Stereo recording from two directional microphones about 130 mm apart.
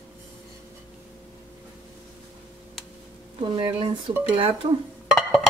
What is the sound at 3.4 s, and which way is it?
Speech, 40° right (ahead or behind).